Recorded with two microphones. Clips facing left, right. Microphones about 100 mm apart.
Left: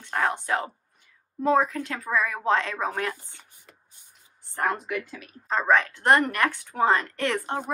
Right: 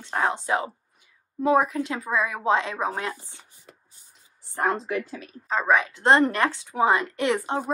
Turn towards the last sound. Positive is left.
turn(degrees=-15)  # may be behind; listen again after turning